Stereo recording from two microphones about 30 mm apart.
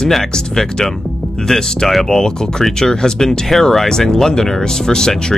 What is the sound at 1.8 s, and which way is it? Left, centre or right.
Speech, centre.